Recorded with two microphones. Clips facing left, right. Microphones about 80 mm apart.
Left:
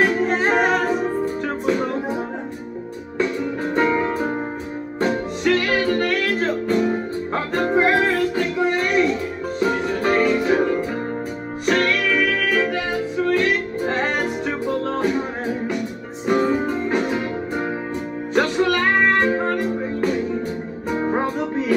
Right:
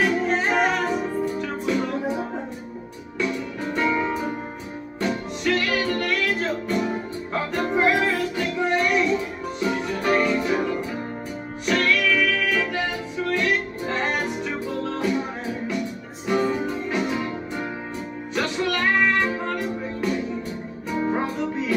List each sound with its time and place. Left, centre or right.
0.0 s music: left
3.2 s music: left
18.3 s music: left